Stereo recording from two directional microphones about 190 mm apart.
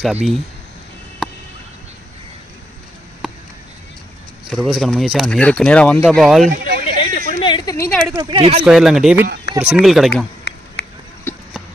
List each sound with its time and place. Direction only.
0.0 s speech: centre (ahead or behind)
4.5 s speech: centre (ahead or behind)
7.0 s a sound: 25° left (ahead or behind)
7.7 s speech: 15° left (ahead or behind)
8.1 s speech: 25° right (ahead or behind)
8.6 s speech: centre (ahead or behind)
10.5 s a sound: 65° left (ahead or behind)